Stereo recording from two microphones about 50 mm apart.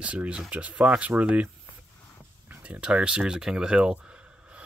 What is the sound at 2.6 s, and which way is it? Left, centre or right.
Speech, right.